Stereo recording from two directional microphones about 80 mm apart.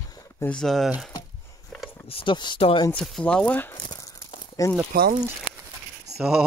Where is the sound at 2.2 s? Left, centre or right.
Left.